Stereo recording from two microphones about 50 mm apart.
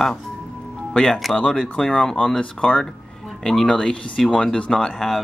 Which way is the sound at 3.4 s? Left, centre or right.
Centre.